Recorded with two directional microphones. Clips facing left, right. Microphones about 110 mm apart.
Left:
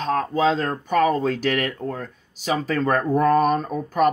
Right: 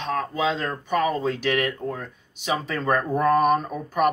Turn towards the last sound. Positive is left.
turn(degrees=40)  # may be behind; listen again after turning